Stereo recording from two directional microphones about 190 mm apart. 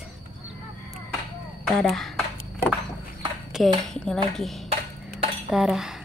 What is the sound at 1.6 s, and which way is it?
Speech, centre (ahead or behind).